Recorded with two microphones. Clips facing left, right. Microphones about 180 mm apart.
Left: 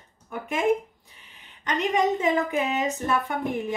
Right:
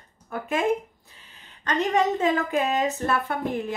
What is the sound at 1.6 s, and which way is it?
A woman's voice, 15° left (ahead or behind).